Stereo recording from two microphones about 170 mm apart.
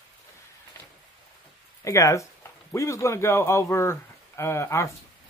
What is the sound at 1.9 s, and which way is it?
Speech, 20° left (ahead or behind).